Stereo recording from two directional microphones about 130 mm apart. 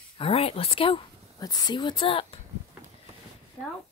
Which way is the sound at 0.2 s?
50° left (ahead or behind).